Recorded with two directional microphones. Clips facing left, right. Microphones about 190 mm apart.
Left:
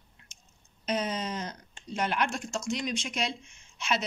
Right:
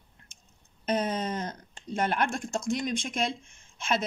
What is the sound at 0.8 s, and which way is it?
Speech, 50° right (ahead or behind).